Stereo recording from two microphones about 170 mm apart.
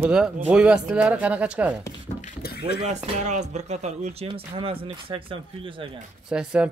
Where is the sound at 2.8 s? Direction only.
40° right (ahead or behind).